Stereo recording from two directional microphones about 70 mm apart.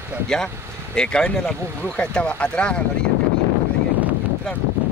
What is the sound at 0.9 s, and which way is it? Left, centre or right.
Speech, centre.